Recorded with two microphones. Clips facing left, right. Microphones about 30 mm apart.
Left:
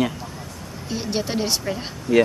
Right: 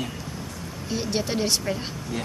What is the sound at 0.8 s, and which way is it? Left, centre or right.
A woman's voice, centre.